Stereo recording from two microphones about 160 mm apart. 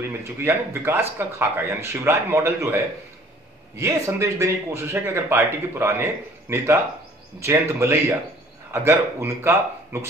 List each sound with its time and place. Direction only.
0.2 s speech: 15° right (ahead or behind)